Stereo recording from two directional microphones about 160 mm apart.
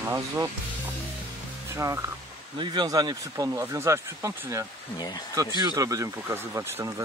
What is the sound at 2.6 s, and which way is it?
Speech, 30° right (ahead or behind).